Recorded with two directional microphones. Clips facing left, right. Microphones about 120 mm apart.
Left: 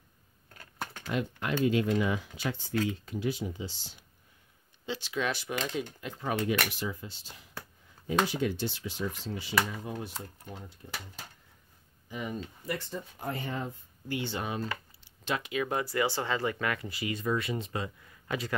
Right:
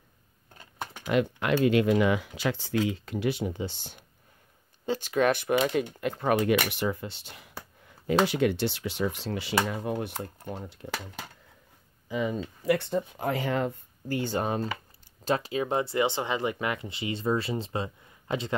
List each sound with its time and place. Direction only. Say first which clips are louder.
1.1 s speech: right 7 dB; 75° right (ahead or behind); by 2.7 s 90° right
2.9 s speech: right 4 dB; 80° right
9.7 s speech: right 7 dB; 65° right (ahead or behind)
12.2 s speech: right 7 dB; 80° right
14.0 s speech: right 5 dB; 40° right (ahead or behind); by 18.6 s 25° right (ahead or behind)